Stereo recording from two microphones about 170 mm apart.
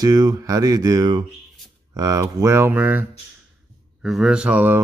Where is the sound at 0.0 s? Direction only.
20° right (ahead or behind).